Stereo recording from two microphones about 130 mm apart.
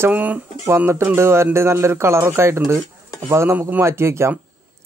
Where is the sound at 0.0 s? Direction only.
10° right (ahead or behind).